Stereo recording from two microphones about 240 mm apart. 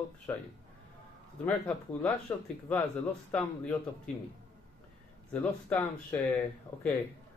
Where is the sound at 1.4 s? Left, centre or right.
Centre.